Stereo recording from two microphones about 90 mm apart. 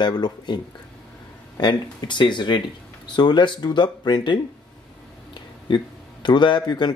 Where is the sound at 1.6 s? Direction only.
55° left (ahead or behind).